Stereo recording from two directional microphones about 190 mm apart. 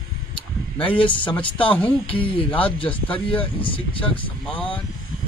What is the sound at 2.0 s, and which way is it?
Speech, 25° left (ahead or behind).